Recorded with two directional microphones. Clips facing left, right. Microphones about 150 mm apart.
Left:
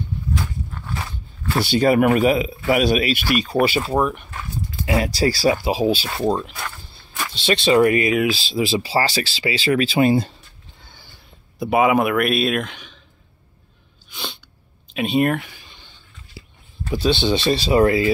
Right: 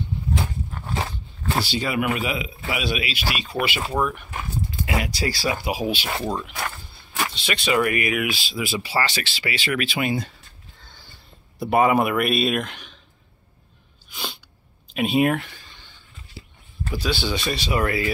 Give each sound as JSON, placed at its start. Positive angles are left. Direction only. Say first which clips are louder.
{"t": 0.3, "sound": "a sound", "louder": "even", "side_deg": -25}
{"t": 1.6, "sound": "speech", "louder": "left 10 dB", "side_deg": 50}
{"t": 3.9, "sound": "speech", "louder": "left 4 dB", "side_deg": 25}
{"t": 11.6, "sound": "speech", "louder": "left 2 dB", "side_deg": 0}
{"t": 14.0, "sound": "sneeze", "louder": "left 1 dB", "side_deg": -5}
{"t": 15.0, "sound": "speech", "louder": "left 1 dB", "side_deg": -5}
{"t": 15.6, "sound": "a sound", "louder": "left 1 dB", "side_deg": 15}
{"t": 16.8, "sound": "speech", "louder": "left 6 dB", "side_deg": 20}